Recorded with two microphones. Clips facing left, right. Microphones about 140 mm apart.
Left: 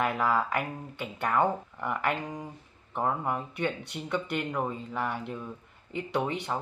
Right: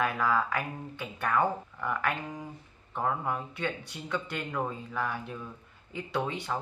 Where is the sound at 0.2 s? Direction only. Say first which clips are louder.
Left 1 dB; 20° left (ahead or behind).